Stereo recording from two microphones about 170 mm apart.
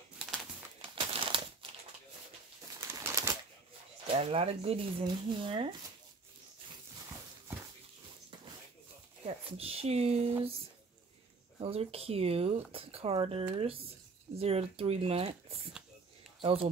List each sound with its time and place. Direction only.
0.9 s crumpling: 30° right (ahead or behind)
2.8 s bird: 15° right (ahead or behind)
4.1 s speech: 35° right (ahead or behind)
9.2 s speech: 35° right (ahead or behind)
11.6 s speech: 35° right (ahead or behind)
16.3 s a sound: 35° right (ahead or behind)